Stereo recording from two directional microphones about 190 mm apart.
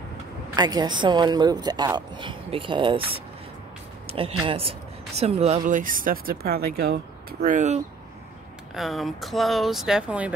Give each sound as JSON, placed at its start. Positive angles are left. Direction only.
{"t": 0.6, "sound": "a woman's voice", "side_deg": -20}
{"t": 4.1, "sound": "speech", "side_deg": -30}
{"t": 5.7, "sound": "speech", "side_deg": -45}
{"t": 8.7, "sound": "speech", "side_deg": 0}